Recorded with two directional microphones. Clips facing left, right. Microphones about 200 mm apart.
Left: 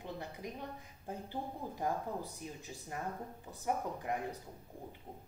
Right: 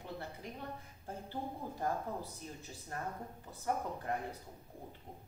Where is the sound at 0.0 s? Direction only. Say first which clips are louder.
Left 1 dB; 15° left (ahead or behind).